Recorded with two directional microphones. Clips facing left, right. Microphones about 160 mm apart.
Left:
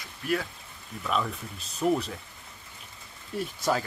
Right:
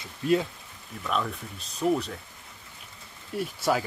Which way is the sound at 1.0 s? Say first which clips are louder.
Even; centre (ahead or behind).